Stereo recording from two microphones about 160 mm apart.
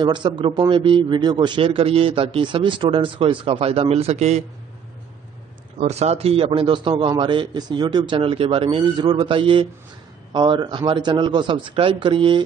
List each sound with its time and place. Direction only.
0.0 s a man's voice: 30° right (ahead or behind)
5.8 s a man's voice: 45° right (ahead or behind)